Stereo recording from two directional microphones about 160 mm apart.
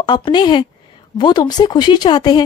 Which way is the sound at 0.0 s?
30° left (ahead or behind).